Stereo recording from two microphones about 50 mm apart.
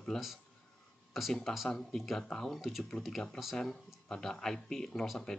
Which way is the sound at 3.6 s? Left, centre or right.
Centre.